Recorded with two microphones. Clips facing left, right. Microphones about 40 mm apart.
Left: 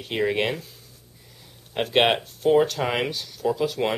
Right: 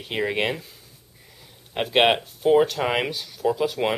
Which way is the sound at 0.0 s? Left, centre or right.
Centre.